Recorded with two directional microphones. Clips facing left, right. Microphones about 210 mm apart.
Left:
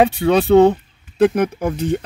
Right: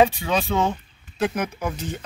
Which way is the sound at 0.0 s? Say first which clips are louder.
Left 5 dB; 65° left (ahead or behind).